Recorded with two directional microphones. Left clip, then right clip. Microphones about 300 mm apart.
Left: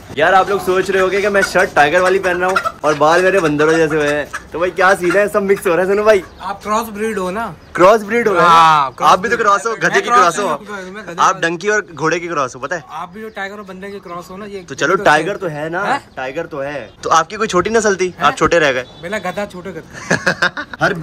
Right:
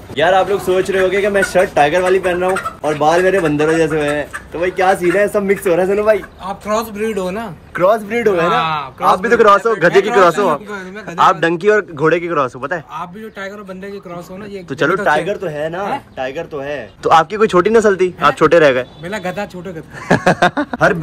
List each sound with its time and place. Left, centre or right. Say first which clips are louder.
0.1 s speech: left 1 dB; centre
8.4 s speech: left 7 dB; left
9.2 s speech: right 4 dB; centre
14.7 s speech: left 2 dB; centre